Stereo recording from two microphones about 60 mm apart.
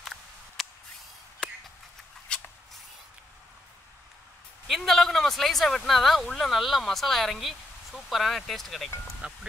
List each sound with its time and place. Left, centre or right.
0.0 s a sound: centre
4.6 s speech: centre
9.2 s speech: centre